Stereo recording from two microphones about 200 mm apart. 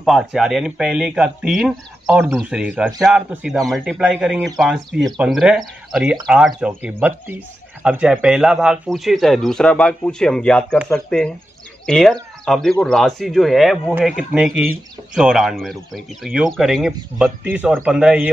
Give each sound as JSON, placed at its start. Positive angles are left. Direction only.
{"t": 0.0, "sound": "speech", "side_deg": 0}